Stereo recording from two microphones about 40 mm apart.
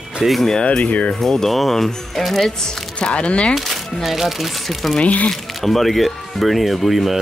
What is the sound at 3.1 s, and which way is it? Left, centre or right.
Speech, left.